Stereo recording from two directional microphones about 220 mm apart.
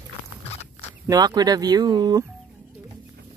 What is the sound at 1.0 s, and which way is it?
Speech, 15° right (ahead or behind).